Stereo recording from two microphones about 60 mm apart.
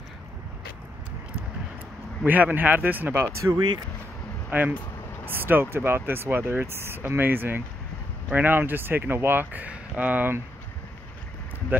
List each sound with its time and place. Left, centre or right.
2.2 s speech: right
3.2 s speech: right
4.5 s speech: right